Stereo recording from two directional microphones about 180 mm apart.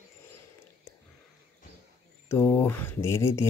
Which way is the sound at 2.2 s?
10° left (ahead or behind).